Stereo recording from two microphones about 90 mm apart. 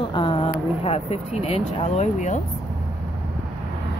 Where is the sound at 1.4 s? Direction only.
90° left.